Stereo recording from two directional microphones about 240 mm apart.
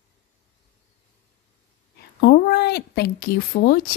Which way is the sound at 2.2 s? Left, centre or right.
Left.